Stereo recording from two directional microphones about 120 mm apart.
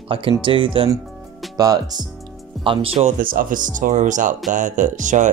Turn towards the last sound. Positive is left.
turn(degrees=-90)